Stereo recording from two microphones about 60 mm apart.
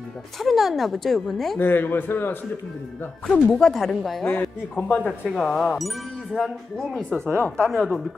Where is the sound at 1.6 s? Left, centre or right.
Left.